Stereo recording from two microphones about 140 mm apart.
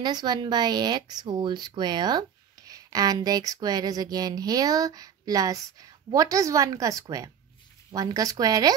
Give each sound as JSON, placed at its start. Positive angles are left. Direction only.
{"t": 0.0, "sound": "speech", "side_deg": -30}